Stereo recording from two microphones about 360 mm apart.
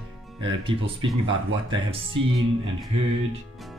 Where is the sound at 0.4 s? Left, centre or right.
Centre.